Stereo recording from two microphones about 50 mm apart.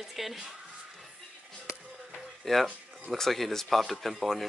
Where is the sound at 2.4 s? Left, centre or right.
Centre.